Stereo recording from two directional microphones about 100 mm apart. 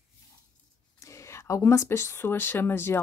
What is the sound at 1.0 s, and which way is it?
Speech, 30° left (ahead or behind).